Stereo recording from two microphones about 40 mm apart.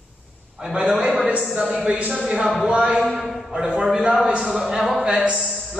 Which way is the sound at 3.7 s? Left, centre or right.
Right.